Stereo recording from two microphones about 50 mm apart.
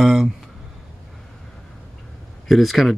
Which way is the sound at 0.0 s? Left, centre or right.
Centre.